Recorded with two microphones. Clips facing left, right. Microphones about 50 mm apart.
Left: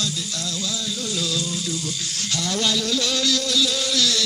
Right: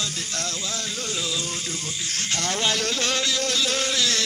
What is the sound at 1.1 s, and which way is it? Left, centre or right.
Music, right.